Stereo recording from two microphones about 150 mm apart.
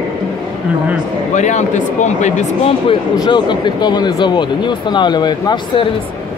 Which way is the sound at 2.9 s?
30° left (ahead or behind).